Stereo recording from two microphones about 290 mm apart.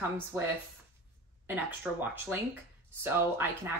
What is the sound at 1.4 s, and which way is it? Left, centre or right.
Speech, centre.